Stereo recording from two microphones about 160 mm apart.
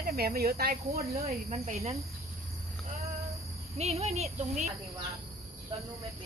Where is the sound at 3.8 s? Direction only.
40° right (ahead or behind).